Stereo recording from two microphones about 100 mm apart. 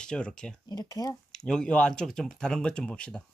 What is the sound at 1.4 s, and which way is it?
Speech, 10° left (ahead or behind).